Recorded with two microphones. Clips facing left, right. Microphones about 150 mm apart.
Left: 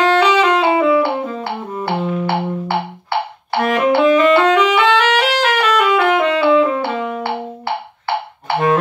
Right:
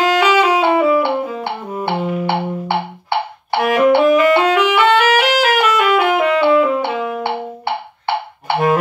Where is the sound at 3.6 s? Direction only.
10° right (ahead or behind).